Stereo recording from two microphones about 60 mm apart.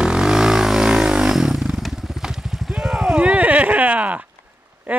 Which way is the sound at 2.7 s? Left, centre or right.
Centre.